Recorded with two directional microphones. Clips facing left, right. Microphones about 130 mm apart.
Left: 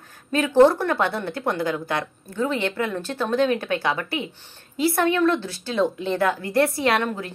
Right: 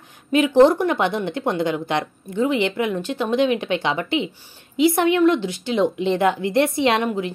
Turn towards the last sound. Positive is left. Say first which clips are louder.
# right 3 dB
turn(degrees=-20)  # may be behind; listen again after turning